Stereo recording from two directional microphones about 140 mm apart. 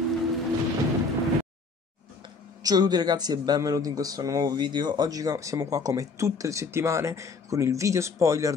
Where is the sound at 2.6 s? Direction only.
30° right (ahead or behind).